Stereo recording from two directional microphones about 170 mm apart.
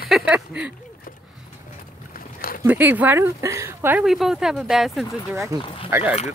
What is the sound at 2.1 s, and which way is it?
Boat, 55° left (ahead or behind).